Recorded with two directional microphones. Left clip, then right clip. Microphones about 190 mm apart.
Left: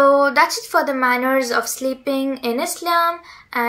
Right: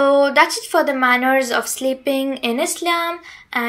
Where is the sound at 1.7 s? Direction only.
45° right (ahead or behind).